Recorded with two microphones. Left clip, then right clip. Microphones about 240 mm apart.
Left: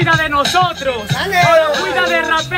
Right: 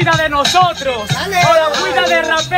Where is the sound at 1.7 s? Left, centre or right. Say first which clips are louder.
Right 1 dB; right.